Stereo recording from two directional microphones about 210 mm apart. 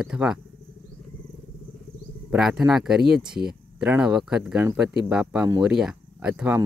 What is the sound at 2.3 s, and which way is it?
Speech, centre (ahead or behind).